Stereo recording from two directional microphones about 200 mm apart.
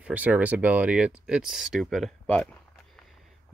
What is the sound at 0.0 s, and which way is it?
Speech, 5° right (ahead or behind).